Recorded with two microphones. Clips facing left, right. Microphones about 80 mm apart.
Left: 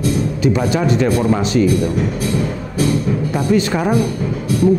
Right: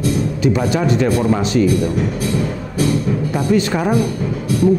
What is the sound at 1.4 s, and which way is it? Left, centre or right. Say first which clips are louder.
Music: even; centre.